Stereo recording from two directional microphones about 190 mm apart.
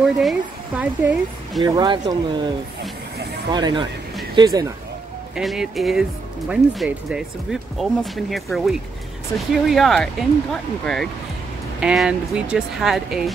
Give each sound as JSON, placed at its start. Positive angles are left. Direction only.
{"t": 0.0, "sound": "speech", "side_deg": 0}
{"t": 1.6, "sound": "speech", "side_deg": -20}
{"t": 5.3, "sound": "speech", "side_deg": 0}